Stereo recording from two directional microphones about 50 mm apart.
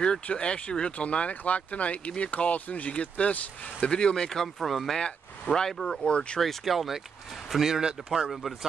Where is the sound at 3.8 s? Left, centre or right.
Centre.